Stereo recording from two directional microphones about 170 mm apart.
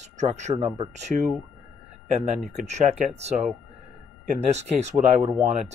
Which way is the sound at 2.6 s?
40° right (ahead or behind).